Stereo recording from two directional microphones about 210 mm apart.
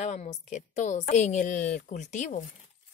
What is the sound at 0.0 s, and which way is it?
A woman's voice, 35° left (ahead or behind).